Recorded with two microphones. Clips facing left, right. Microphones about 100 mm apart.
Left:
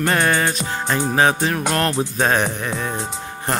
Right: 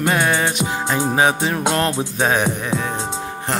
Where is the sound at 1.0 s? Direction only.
20° right (ahead or behind).